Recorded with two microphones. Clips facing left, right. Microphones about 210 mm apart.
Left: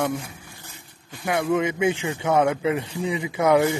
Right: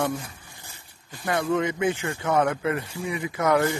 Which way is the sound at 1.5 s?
15° left (ahead or behind).